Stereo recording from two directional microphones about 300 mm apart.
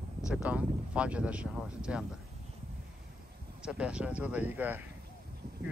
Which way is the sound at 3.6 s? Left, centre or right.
Centre.